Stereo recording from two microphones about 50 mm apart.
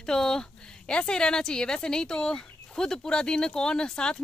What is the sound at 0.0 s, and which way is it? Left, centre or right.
A woman's voice, centre.